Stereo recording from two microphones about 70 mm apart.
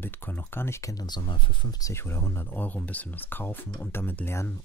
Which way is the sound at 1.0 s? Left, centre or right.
Left.